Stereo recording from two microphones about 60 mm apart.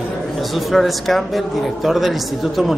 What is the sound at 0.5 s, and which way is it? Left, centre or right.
Speech, centre.